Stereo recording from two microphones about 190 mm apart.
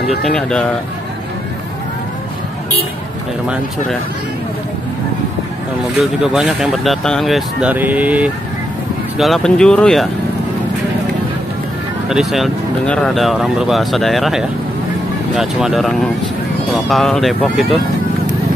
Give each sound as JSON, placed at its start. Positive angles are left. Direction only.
{"t": 0.2, "sound": "speech", "side_deg": 5}
{"t": 6.2, "sound": "speech", "side_deg": -5}
{"t": 12.1, "sound": "speech", "side_deg": 0}